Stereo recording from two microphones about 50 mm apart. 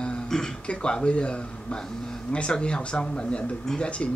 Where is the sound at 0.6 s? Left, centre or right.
Left.